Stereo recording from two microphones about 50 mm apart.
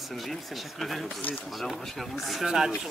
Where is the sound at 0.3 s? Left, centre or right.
Centre.